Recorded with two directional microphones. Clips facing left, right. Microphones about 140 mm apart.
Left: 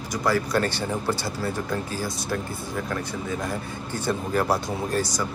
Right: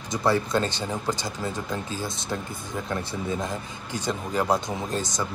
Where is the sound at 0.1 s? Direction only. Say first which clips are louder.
Even; 25° right (ahead or behind).